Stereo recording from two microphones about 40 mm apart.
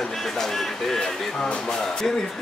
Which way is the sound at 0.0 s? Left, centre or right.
Centre.